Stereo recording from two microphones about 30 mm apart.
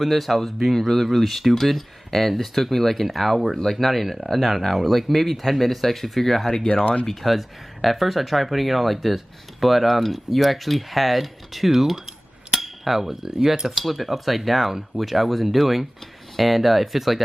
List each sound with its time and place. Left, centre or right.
0.0 s speech: centre
6.8 s speech: left
7.2 s speech: centre
12.5 s a sound: centre
13.4 s speech: centre